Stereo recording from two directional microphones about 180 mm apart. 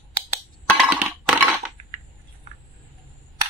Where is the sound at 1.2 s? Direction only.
Centre (ahead or behind).